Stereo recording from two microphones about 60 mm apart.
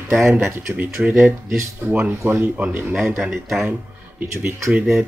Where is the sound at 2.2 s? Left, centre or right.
Right.